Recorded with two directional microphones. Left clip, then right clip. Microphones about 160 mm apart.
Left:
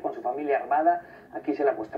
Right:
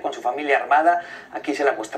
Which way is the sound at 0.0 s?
15° right (ahead or behind).